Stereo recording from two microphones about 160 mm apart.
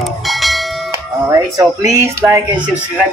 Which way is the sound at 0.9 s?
20° right (ahead or behind).